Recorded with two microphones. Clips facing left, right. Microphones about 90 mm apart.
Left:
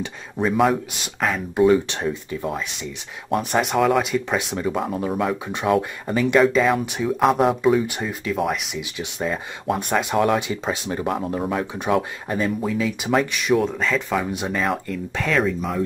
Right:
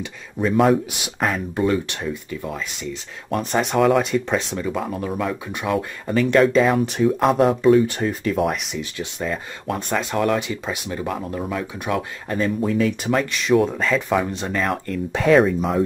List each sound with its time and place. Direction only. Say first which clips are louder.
0.4 s speech: right 2 dB; 5° left (ahead or behind)
2.4 s speech: left 3 dB; 25° left (ahead or behind)
3.3 s speech: left 1 dB; 5° left (ahead or behind)
10.5 s speech: left 2 dB; 25° left (ahead or behind)
12.3 s speech: right 4 dB; 5° left (ahead or behind)
13.6 s speech: right 2 dB; centre (ahead or behind)
14.3 s speech: even; 10° left (ahead or behind)
15.1 s speech: right 6 dB; 15° right (ahead or behind)